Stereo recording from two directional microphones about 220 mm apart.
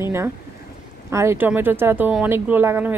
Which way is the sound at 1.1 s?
10° right (ahead or behind).